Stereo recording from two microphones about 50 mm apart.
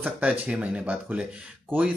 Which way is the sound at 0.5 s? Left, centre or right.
Right.